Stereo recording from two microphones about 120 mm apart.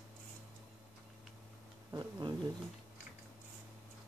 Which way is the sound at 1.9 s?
30° right (ahead or behind).